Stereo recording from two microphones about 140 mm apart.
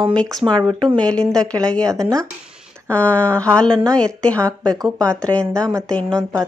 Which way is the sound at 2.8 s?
10° left (ahead or behind).